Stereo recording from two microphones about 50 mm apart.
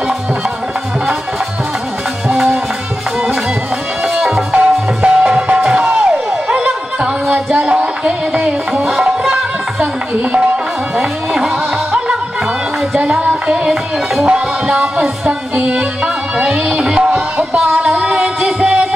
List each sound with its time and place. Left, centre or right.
2.2 s music: centre
4.0 s music: centre
11.0 s music: centre
13.3 s music: centre
17.8 s music: centre